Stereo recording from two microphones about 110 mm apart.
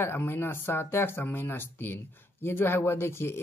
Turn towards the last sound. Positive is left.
turn(degrees=25)  # may be behind; listen again after turning